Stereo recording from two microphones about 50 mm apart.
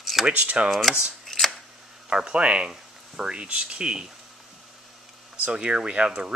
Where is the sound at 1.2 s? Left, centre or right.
Centre.